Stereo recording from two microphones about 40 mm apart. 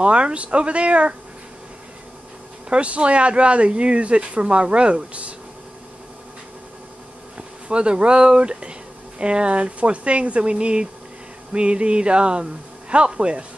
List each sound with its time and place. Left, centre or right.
0.0 s speech: right
2.7 s speech: right
7.3 s speech: right